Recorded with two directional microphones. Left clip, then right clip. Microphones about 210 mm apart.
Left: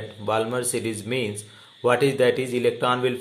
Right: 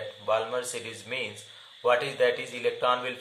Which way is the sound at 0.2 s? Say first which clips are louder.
Left 4 dB; 40° left (ahead or behind).